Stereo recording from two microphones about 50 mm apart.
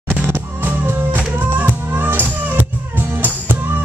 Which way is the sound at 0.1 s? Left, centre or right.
Right.